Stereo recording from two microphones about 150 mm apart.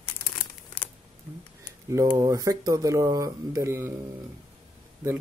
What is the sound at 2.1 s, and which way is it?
Speech, 25° right (ahead or behind).